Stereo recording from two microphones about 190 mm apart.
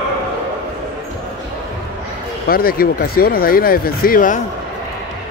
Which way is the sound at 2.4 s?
50° left (ahead or behind).